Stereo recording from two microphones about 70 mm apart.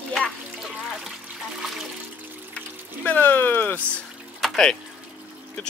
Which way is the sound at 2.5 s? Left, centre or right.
Left.